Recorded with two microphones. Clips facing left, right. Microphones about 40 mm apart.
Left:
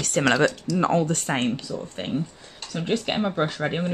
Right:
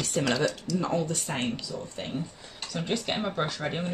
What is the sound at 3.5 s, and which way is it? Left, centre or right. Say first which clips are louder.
Speech: left 5 dB; left.